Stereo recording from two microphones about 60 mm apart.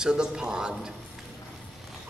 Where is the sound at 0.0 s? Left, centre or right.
Centre.